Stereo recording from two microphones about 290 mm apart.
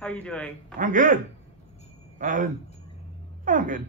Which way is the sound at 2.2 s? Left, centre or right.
Right.